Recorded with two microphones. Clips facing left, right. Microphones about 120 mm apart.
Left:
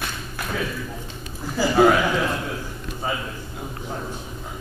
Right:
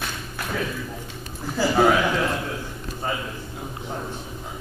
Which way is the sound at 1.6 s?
Centre (ahead or behind).